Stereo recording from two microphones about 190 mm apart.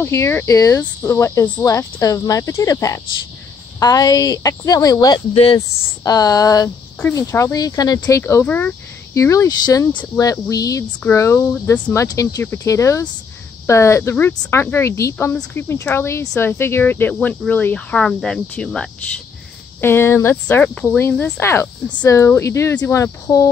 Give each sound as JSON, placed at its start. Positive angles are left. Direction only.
{"t": 0.0, "sound": "speech", "side_deg": 15}